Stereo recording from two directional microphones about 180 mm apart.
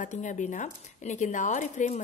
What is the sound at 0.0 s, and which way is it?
Speech, 45° left (ahead or behind).